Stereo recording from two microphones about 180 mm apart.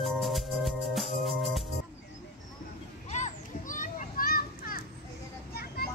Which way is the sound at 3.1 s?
40° left (ahead or behind).